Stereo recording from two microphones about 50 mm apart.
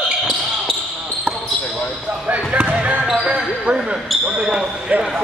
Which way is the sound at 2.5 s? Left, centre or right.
Right.